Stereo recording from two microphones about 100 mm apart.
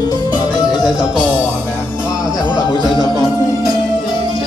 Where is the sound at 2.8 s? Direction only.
40° right (ahead or behind).